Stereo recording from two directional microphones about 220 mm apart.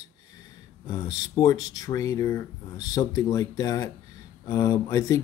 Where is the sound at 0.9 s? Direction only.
20° left (ahead or behind).